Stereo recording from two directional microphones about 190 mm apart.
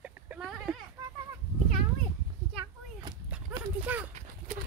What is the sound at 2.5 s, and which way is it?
Children playing, 20° right (ahead or behind).